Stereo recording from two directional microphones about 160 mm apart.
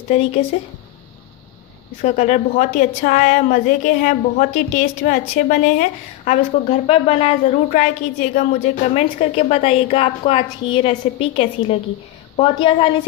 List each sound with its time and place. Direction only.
0.1 s a woman's voice: 40° left (ahead or behind)
2.0 s a woman's voice: 45° left (ahead or behind)
5.7 s a woman's voice: 45° left (ahead or behind)